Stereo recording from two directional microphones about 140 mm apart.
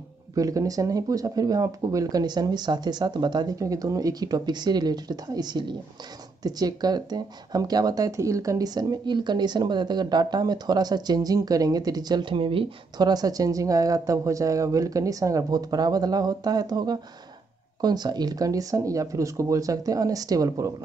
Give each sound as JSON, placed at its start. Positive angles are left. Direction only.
{"t": 0.4, "sound": "speech", "side_deg": -25}